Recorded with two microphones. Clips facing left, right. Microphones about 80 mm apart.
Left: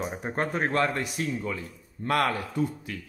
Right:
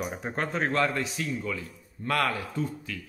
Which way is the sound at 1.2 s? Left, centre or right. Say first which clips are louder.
Left 1 dB; left.